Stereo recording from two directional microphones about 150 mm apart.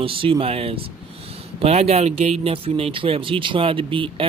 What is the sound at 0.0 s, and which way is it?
Speech, 35° right (ahead or behind).